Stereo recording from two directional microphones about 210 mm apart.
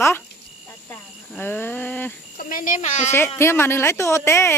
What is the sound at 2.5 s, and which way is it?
Speech, 40° left (ahead or behind).